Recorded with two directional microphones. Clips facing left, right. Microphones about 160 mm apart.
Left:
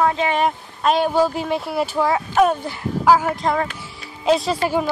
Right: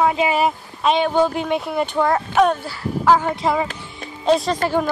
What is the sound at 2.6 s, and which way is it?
Speech, 20° left (ahead or behind).